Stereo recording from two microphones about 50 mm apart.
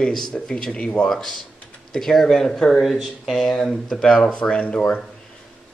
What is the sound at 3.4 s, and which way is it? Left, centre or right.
A man's voice, centre.